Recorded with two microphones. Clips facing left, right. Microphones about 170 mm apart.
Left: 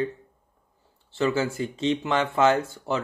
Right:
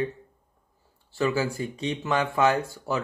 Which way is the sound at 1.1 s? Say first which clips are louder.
Left 1 dB; 25° left (ahead or behind).